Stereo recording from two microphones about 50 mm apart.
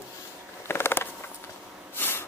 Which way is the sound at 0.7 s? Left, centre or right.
Left.